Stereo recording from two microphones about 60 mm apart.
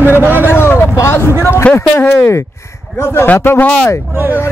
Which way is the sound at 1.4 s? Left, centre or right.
Left.